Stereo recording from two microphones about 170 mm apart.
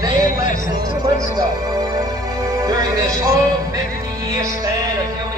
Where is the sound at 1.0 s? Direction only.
20° right (ahead or behind).